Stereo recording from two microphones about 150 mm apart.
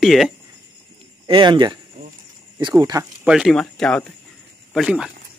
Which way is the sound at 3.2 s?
5° right (ahead or behind).